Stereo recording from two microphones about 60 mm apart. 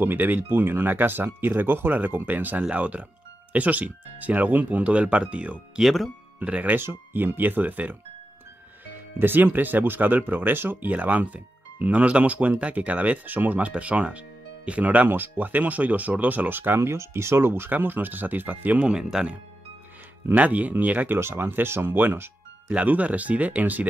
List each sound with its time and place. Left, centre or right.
0.0 s speech: right
5.8 s speech: centre
6.4 s speech: right
6.8 s speech: right; by 19.2 s centre
20.3 s speech: right
21.2 s speech: right
22.7 s speech: right